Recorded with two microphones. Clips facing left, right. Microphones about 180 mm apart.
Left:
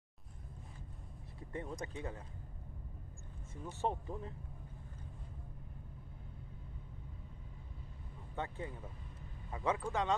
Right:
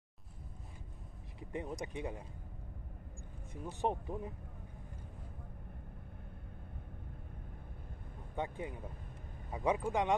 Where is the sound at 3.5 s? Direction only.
15° right (ahead or behind).